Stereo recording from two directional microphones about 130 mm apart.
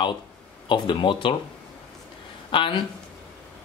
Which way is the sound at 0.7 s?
40° left (ahead or behind).